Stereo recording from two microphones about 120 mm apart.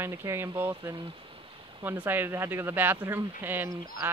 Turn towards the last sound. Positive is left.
turn(degrees=-15)  # may be behind; listen again after turning